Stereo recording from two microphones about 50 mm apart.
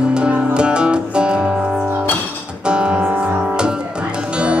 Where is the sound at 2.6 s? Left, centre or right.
Centre.